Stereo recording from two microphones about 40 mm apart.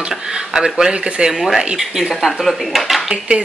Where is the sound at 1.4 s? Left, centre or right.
Centre.